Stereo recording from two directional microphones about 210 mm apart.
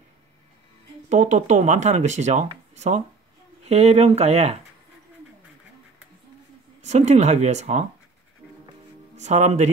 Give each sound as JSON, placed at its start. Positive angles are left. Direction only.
{"t": 1.0, "sound": "speech", "side_deg": -35}
{"t": 6.8, "sound": "speech", "side_deg": -35}
{"t": 9.1, "sound": "speech", "side_deg": -35}